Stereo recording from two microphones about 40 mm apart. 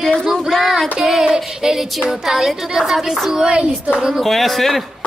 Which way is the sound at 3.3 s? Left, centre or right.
Right.